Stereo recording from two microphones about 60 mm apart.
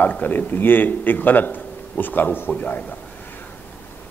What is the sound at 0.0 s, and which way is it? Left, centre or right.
A man's voice, left.